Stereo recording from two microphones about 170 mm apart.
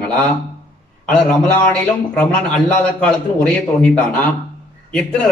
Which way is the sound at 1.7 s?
5° left (ahead or behind).